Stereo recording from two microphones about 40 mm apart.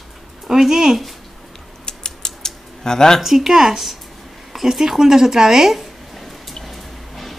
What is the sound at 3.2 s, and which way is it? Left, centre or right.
Speech, centre.